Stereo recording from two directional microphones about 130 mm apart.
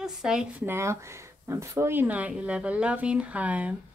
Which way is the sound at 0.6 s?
20° right (ahead or behind).